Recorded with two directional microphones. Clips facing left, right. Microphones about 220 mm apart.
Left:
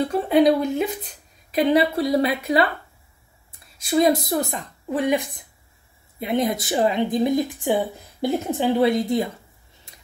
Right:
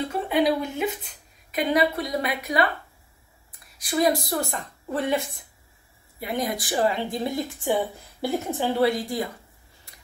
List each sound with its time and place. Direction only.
0.3 s a woman's voice: 35° left (ahead or behind)
3.7 s a woman's voice: 25° left (ahead or behind)
9.9 s tick-tock: 20° left (ahead or behind)